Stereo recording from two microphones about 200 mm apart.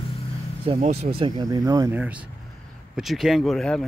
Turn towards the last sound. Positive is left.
turn(degrees=5)  # may be behind; listen again after turning